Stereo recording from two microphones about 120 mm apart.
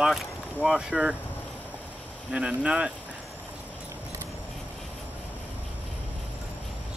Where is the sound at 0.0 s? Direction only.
Centre (ahead or behind).